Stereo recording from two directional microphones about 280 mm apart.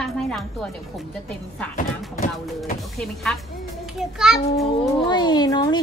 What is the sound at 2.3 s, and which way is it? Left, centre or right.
Speech, centre.